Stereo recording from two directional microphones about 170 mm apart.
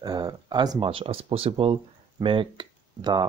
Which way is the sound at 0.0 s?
20° right (ahead or behind).